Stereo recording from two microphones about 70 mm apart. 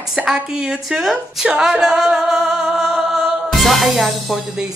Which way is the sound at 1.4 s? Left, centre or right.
Centre.